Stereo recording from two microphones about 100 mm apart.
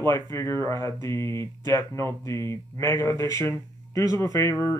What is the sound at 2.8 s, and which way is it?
Speech, 50° right (ahead or behind).